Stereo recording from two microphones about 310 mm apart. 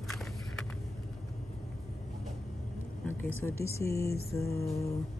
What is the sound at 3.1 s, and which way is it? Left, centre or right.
Speech, centre.